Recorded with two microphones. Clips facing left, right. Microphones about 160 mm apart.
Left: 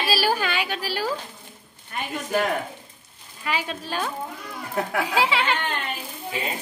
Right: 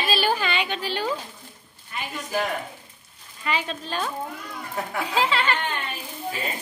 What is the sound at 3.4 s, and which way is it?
Speech, 10° left (ahead or behind).